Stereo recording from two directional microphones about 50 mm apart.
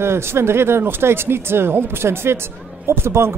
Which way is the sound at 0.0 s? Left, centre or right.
Right.